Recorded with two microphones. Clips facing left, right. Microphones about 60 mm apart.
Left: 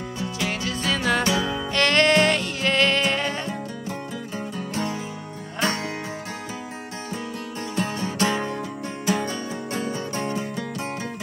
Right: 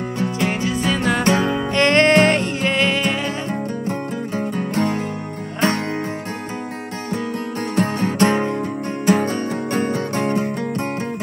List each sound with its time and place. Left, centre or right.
0.5 s music: centre
0.9 s music: centre
1.2 s music: right
1.7 s music: right
2.7 s music: centre
4.4 s music: right
7.7 s music: right
9.0 s music: right